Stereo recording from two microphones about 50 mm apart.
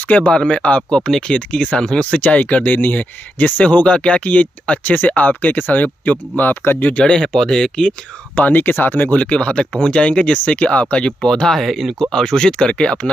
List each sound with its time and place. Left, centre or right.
0.3 s speech: centre
2.1 s speech: left
7.0 s speech: centre
8.4 s speech: left
9.1 s speech: left
11.6 s speech: centre
12.1 s speech: centre